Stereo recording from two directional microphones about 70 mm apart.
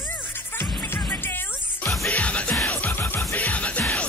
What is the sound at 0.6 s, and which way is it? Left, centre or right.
Music, left.